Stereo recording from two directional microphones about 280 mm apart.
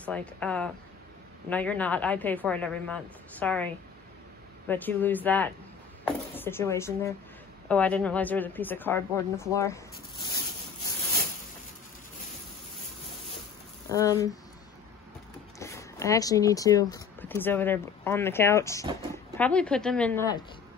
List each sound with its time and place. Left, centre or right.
0.0 s speech: centre
13.8 s speech: centre
15.6 s speech: centre